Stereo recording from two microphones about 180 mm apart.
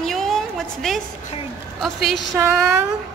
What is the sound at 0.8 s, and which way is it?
A woman's voice, 5° left (ahead or behind).